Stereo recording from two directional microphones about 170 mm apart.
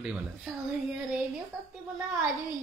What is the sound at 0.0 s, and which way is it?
Speech, 5° right (ahead or behind).